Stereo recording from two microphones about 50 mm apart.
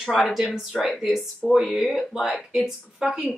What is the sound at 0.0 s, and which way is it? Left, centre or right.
A woman's voice, centre.